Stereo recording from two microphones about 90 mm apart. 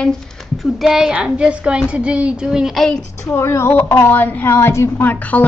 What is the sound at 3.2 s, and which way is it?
A woman's voice, 30° left (ahead or behind).